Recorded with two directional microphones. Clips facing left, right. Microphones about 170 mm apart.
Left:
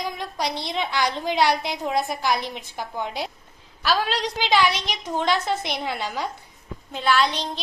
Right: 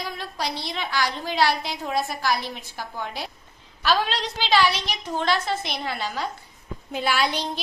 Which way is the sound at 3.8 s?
5° left (ahead or behind).